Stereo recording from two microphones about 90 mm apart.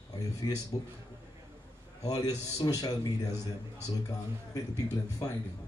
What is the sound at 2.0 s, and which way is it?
Speech, 45° left (ahead or behind).